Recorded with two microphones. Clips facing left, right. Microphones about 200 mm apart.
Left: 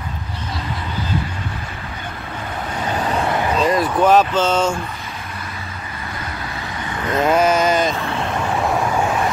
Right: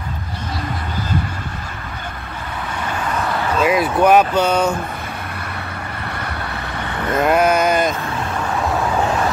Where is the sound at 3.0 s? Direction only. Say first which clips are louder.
Left 2 dB; 35° left (ahead or behind).